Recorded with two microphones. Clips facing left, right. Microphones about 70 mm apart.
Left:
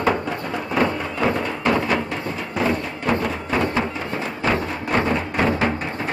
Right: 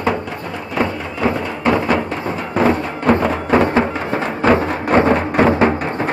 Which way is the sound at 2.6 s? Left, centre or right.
Right.